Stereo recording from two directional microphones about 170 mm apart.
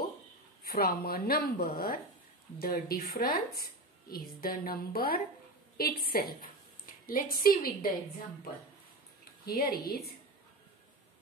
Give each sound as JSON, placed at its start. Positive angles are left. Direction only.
{"t": 0.7, "sound": "a woman's voice", "side_deg": 65}
{"t": 9.5, "sound": "a woman's voice", "side_deg": 60}